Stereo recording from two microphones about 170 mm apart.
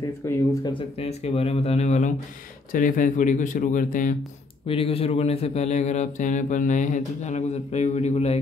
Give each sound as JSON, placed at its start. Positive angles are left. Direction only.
{"t": 0.2, "sound": "speech", "side_deg": 15}
{"t": 0.7, "sound": "speech", "side_deg": 35}
{"t": 4.6, "sound": "speech", "side_deg": 35}